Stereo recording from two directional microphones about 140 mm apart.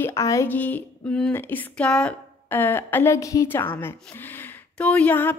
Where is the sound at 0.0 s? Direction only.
20° left (ahead or behind).